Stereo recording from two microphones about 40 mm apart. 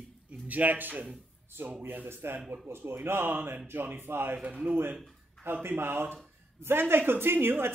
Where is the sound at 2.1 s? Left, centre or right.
Right.